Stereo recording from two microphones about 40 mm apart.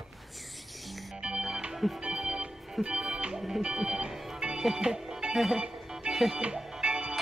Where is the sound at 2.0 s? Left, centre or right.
Right.